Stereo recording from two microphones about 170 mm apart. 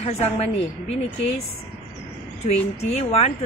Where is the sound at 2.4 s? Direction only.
40° left (ahead or behind).